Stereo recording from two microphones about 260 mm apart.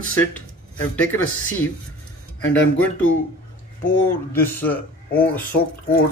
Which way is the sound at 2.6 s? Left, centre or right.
Left.